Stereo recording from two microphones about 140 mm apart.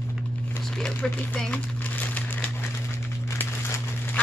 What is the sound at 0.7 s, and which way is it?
Speech, 5° left (ahead or behind).